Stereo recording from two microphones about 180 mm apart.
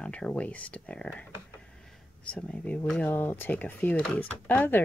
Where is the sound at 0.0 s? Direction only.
5° left (ahead or behind).